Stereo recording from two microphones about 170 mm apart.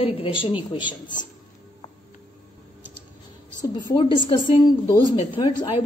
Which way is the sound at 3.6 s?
25° left (ahead or behind).